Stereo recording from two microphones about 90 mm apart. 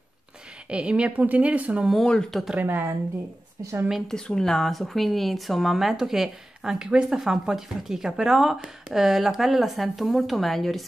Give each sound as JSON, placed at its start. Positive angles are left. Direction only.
{"t": 0.7, "sound": "speech", "side_deg": -10}
{"t": 1.9, "sound": "a woman's voice", "side_deg": 5}
{"t": 2.6, "sound": "speech", "side_deg": -20}
{"t": 4.1, "sound": "a woman's voice", "side_deg": 5}